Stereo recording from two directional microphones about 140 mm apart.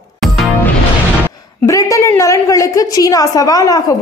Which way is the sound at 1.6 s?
25° left (ahead or behind).